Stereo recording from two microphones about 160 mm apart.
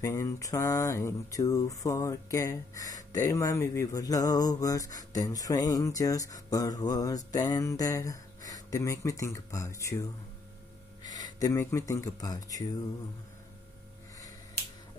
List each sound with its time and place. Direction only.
0.0 s speech: 20° left (ahead or behind)
11.1 s speech: 25° left (ahead or behind)